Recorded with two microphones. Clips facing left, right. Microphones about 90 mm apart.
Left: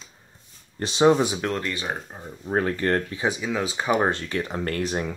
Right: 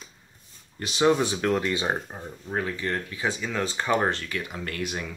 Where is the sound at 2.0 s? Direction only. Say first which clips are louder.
Right 1 dB; 5° right (ahead or behind).